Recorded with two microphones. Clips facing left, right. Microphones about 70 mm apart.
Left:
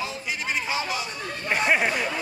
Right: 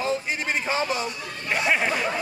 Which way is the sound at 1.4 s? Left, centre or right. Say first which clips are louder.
Left 1 dB; centre.